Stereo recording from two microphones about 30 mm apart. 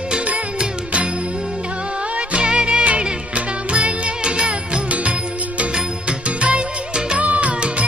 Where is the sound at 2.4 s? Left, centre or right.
Right.